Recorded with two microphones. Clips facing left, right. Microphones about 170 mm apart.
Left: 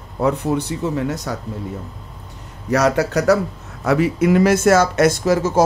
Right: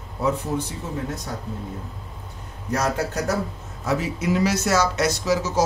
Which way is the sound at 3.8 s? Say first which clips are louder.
Left 8 dB; 65° left (ahead or behind).